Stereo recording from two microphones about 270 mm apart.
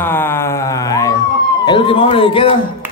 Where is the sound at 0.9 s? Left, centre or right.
Centre.